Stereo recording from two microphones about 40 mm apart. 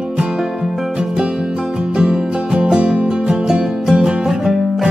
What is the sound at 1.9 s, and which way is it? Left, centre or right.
Music, centre.